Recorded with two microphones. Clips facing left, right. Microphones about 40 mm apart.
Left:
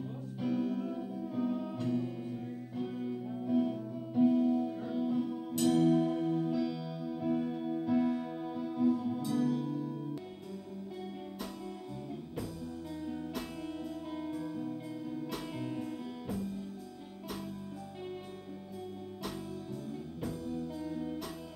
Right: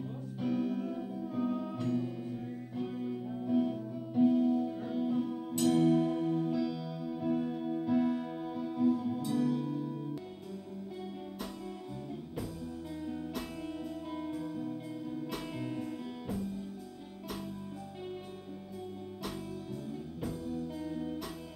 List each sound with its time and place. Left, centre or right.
0.4 s music: centre
4.8 s music: centre
6.8 s music: centre
7.2 s music: centre
13.0 s music: centre
20.2 s music: centre